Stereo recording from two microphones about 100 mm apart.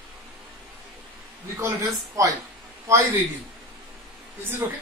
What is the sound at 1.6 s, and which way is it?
Speech, 30° right (ahead or behind).